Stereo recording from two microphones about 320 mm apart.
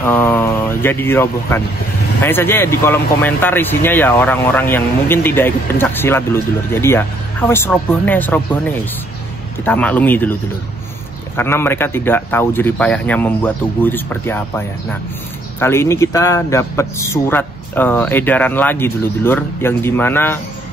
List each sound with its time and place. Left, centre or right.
0.0 s speech: centre
11.3 s speech: centre